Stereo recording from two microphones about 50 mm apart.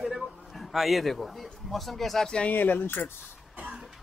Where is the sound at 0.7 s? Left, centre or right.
Centre.